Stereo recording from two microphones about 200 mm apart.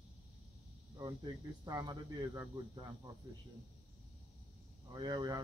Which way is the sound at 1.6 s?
20° right (ahead or behind).